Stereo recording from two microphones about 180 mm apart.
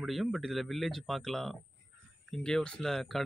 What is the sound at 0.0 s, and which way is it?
Speech, centre (ahead or behind).